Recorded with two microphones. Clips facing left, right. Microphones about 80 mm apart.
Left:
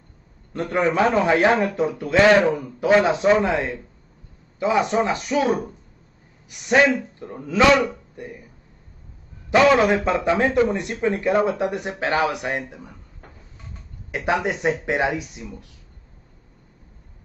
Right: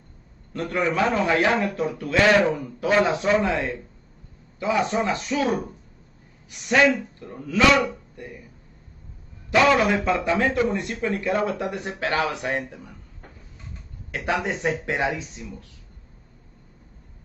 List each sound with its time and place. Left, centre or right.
0.5 s speech: left
9.5 s speech: left
14.4 s speech: centre